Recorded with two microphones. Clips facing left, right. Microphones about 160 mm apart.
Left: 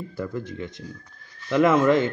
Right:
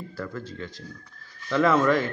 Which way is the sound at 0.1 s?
20° left (ahead or behind).